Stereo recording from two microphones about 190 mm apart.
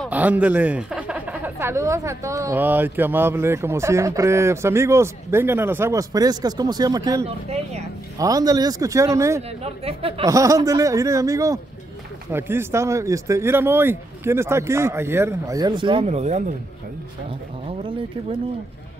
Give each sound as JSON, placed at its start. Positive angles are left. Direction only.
{"t": 0.1, "sound": "speech", "side_deg": -10}
{"t": 7.2, "sound": "speech", "side_deg": -35}
{"t": 8.2, "sound": "speech", "side_deg": -20}
{"t": 9.6, "sound": "speech", "side_deg": -30}
{"t": 10.2, "sound": "speech", "side_deg": -15}